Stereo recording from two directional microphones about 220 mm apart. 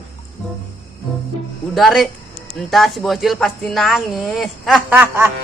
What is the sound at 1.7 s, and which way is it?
Speech, centre (ahead or behind).